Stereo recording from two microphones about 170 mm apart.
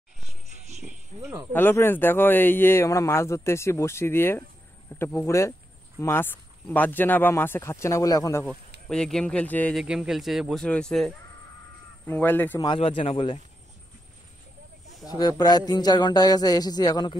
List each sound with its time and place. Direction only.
1.5 s a man's voice: 10° left (ahead or behind)
8.8 s speech: 5° left (ahead or behind)
9.8 s a man's voice: 5° right (ahead or behind)
12.5 s a man's voice: 30° left (ahead or behind)
15.0 s a man's voice: 25° left (ahead or behind)